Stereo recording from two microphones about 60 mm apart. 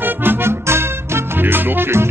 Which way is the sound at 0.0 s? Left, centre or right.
Right.